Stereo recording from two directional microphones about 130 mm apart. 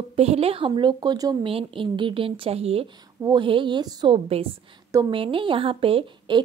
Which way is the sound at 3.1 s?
35° right (ahead or behind).